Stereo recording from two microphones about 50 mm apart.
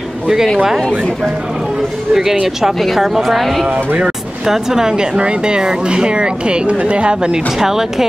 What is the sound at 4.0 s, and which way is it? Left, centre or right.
Speech, centre.